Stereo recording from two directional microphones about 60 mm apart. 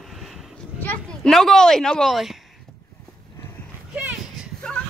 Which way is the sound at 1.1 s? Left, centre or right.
Centre.